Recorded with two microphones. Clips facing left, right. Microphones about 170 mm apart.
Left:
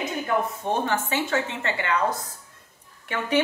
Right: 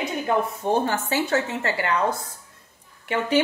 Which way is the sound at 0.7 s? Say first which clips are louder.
Right 3 dB; 35° right (ahead or behind).